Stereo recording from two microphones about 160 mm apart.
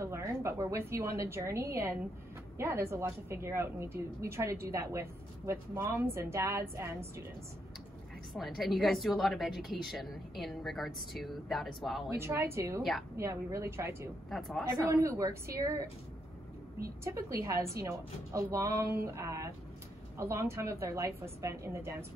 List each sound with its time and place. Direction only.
0.0 s a woman's voice: 15° right (ahead or behind)
8.3 s a woman's voice: centre (ahead or behind)
12.2 s a woman's voice: 15° right (ahead or behind)
17.0 s a woman's voice: 20° right (ahead or behind)